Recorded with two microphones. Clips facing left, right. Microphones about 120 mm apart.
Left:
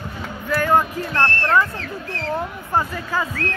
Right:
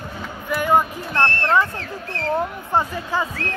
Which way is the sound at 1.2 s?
25° right (ahead or behind).